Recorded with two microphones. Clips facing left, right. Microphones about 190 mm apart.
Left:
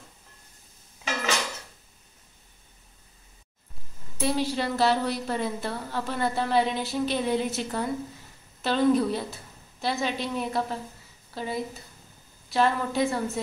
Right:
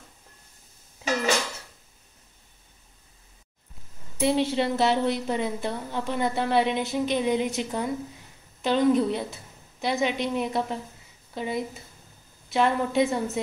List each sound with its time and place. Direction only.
4.2 s a woman's voice: 25° right (ahead or behind)